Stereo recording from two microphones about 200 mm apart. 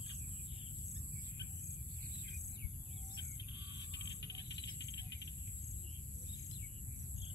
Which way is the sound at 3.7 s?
60° left (ahead or behind).